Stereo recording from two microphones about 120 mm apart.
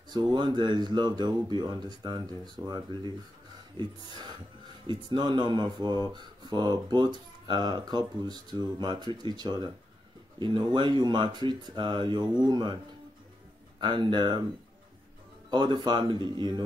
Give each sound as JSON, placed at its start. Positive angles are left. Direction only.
{"t": 0.1, "sound": "speech", "side_deg": -35}
{"t": 13.7, "sound": "speech", "side_deg": -40}
{"t": 15.5, "sound": "speech", "side_deg": -40}